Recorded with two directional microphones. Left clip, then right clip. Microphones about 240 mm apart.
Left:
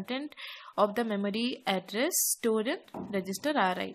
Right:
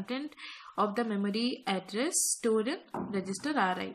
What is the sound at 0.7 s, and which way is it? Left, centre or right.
Speech, left.